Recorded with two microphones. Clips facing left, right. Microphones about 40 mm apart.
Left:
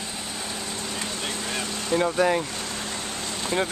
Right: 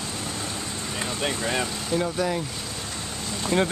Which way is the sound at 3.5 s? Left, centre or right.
Centre.